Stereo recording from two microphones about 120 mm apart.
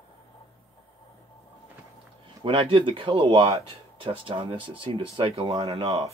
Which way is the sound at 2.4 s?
50° right (ahead or behind).